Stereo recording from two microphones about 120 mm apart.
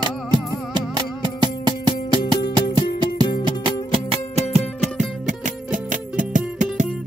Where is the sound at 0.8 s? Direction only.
40° right (ahead or behind).